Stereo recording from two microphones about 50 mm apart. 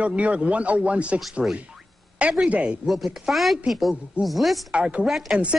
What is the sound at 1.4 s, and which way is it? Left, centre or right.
Speech, centre.